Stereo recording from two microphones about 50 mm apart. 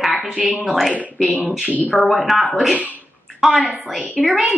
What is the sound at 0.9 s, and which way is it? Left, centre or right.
Speech, right.